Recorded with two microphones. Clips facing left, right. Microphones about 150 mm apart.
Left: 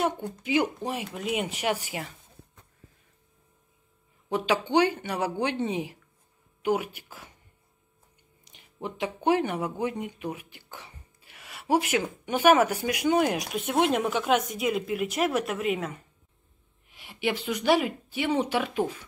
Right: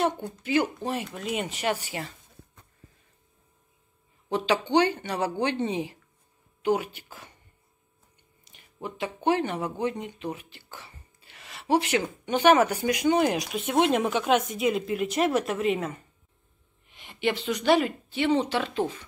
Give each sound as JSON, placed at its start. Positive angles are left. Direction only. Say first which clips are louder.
{"t": 0.0, "sound": "speech", "louder": "right 1 dB", "side_deg": 10}
{"t": 4.3, "sound": "speech", "louder": "right 1 dB", "side_deg": 5}
{"t": 8.5, "sound": "a sound", "louder": "left 1 dB", "side_deg": 15}
{"t": 8.8, "sound": "speech", "louder": "even", "side_deg": 15}